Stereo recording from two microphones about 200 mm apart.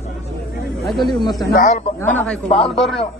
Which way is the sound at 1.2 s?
20° left (ahead or behind).